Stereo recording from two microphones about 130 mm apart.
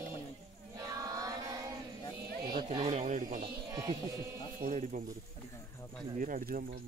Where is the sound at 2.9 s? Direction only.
65° right (ahead or behind).